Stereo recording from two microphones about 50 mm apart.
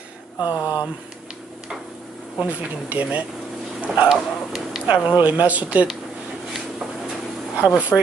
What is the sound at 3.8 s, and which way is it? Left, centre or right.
Bow-wow, right.